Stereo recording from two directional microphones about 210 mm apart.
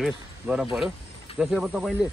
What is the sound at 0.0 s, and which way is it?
Speech, 5° right (ahead or behind).